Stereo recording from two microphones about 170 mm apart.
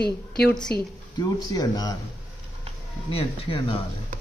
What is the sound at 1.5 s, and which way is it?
Speech, 20° left (ahead or behind).